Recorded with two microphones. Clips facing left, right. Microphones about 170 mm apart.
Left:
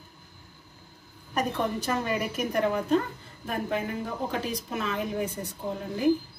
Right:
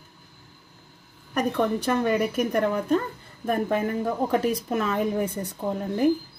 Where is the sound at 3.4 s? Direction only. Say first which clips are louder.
Right 6 dB; 50° right (ahead or behind).